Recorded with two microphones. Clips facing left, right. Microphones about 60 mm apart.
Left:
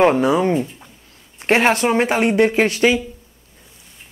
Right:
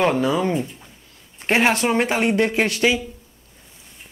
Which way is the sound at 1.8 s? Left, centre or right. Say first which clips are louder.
Left 3 dB; left.